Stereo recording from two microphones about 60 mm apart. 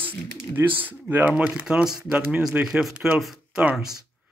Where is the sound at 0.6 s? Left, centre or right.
Right; by 3.2 s centre.